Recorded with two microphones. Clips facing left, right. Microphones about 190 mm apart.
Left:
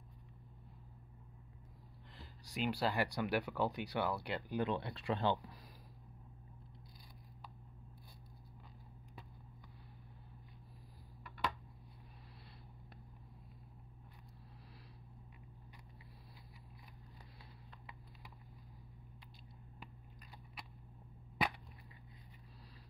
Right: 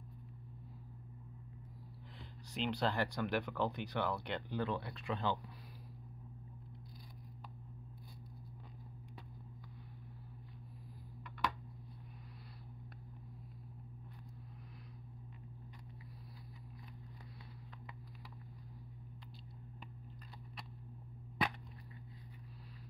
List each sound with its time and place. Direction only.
2.4 s speech: 10° left (ahead or behind)
4.6 s speech: 25° left (ahead or behind)